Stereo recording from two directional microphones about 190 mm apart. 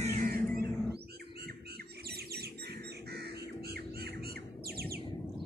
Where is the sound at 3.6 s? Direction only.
55° right (ahead or behind).